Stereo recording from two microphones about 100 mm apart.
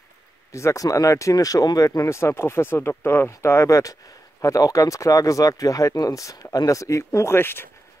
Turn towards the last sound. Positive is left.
turn(degrees=20)  # may be behind; listen again after turning